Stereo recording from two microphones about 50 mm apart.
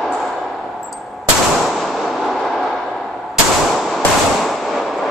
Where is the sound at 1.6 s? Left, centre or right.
Centre.